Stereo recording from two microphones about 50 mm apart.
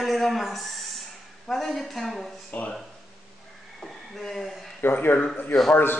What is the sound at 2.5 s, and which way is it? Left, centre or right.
Speech, left.